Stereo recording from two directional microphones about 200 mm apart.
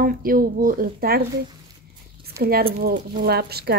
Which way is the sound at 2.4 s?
50° right (ahead or behind).